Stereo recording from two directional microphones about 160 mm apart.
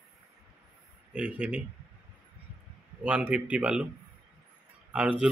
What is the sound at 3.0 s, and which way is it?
Speech, 10° right (ahead or behind).